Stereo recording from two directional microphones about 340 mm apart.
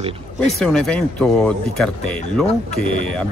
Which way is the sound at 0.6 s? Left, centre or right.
Centre.